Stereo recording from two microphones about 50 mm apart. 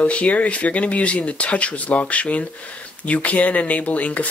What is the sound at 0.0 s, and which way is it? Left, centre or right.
Speech, left.